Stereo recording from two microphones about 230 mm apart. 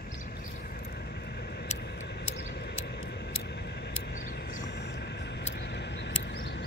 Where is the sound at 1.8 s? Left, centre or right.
Left.